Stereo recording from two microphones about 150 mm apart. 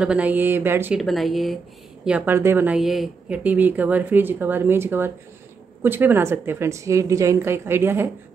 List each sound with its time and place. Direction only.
0.0 s speech: 10° right (ahead or behind)
0.9 s speech: centre (ahead or behind)
2.0 s speech: 10° right (ahead or behind)